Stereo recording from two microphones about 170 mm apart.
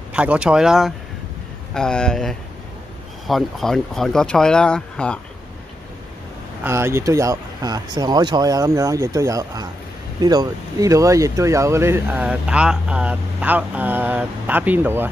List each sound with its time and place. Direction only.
0.1 s speech: 5° right (ahead or behind)
6.6 s speech: 15° right (ahead or behind)